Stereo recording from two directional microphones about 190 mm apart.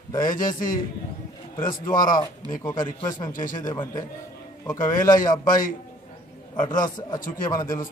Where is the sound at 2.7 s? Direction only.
20° left (ahead or behind).